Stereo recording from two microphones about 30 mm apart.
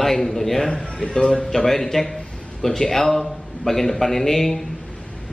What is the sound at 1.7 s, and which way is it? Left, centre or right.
A man's voice, centre.